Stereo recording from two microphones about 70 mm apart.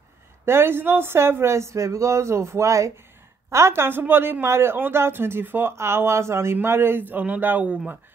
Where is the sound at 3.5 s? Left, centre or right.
Right.